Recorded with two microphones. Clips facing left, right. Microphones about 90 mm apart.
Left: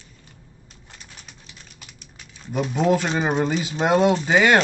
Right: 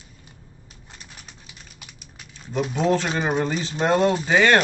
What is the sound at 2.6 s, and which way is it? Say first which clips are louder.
Speech: left 1 dB; 5° left (ahead or behind).